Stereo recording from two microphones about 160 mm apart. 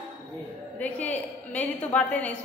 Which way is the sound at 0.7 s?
10° left (ahead or behind).